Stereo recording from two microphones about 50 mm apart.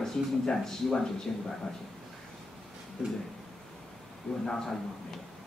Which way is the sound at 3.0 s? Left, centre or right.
Centre.